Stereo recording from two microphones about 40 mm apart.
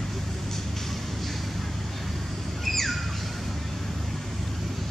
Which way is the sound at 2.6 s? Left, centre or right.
Centre.